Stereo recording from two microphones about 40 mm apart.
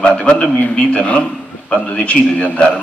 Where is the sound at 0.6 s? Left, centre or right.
Left.